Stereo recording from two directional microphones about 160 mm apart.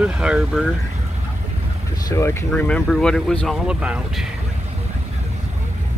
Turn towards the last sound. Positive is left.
turn(degrees=-5)  # may be behind; listen again after turning